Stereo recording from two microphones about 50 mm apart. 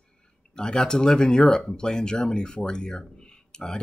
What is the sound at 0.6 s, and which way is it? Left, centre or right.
Speech, centre.